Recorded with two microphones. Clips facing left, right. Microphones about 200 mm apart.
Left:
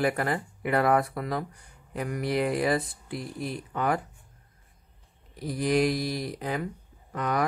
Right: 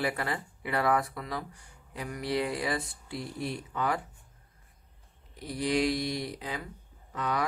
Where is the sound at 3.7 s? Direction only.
50° left (ahead or behind).